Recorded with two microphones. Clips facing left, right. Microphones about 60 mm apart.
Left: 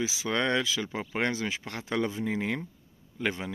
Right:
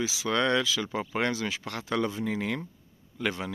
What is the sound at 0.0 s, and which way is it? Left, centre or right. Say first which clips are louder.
Speech: right 2 dB; left.